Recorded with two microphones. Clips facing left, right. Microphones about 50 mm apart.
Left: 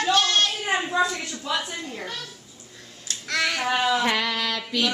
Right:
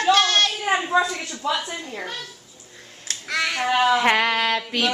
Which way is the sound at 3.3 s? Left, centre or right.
Centre.